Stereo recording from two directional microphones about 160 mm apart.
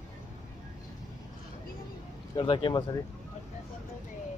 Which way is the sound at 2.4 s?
30° left (ahead or behind).